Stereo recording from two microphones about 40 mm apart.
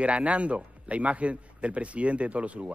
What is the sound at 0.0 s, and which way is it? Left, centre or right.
Speech, right.